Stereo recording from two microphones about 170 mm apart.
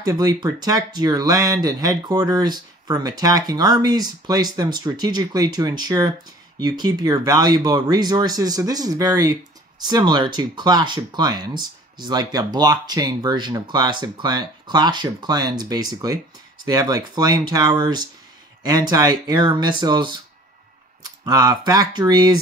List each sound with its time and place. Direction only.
0.0 s speech: 20° right (ahead or behind)